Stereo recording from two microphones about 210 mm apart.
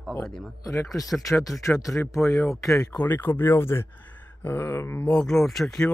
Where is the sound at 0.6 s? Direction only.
15° left (ahead or behind).